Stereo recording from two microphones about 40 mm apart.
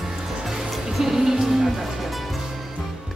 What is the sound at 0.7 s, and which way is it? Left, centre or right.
Music, centre.